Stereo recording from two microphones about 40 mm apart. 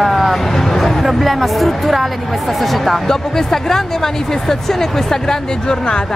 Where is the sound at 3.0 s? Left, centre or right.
Centre.